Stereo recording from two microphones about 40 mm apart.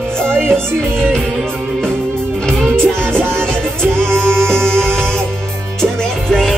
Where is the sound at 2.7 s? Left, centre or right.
Right.